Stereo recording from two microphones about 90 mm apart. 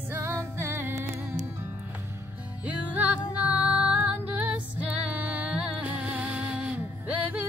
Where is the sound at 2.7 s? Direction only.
15° right (ahead or behind).